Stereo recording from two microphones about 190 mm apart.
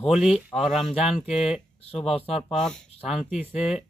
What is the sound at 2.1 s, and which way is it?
Speech, 30° left (ahead or behind).